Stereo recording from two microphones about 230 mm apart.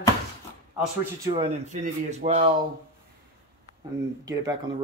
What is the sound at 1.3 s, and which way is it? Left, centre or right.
Speech, right.